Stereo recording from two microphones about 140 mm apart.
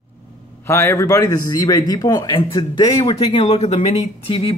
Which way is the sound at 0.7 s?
20° left (ahead or behind).